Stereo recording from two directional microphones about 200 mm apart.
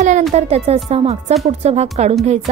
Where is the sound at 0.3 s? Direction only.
30° right (ahead or behind).